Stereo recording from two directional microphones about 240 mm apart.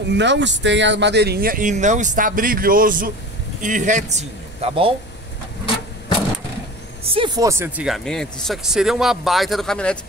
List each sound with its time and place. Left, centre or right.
0.1 s a man's voice: right
7.1 s speech: centre